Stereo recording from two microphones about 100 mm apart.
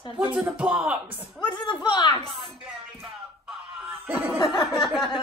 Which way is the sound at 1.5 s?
50° left (ahead or behind).